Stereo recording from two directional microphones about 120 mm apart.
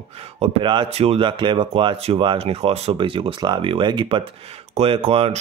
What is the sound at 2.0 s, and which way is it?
Speech, 60° right (ahead or behind).